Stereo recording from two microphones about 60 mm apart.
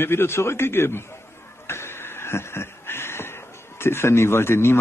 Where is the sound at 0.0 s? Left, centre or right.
Left.